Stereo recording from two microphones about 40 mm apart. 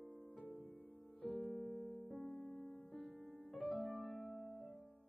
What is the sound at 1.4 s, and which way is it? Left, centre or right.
Music, right.